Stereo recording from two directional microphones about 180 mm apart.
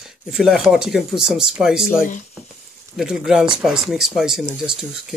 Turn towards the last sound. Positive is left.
turn(degrees=-5)  # may be behind; listen again after turning